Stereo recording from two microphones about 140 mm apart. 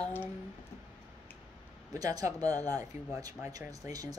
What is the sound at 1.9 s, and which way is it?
Speech, 25° right (ahead or behind).